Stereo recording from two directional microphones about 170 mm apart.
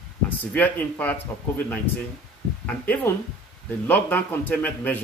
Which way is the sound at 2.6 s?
10° left (ahead or behind).